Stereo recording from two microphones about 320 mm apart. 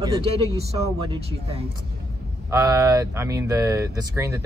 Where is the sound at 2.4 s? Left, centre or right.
Centre.